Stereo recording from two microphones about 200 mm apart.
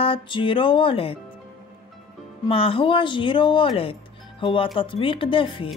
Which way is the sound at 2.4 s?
25° left (ahead or behind).